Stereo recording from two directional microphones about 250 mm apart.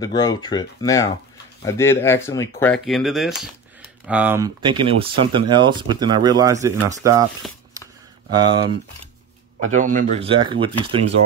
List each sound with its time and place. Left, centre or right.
0.0 s speech: centre
4.6 s speech: centre
8.3 s speech: centre
9.7 s speech: right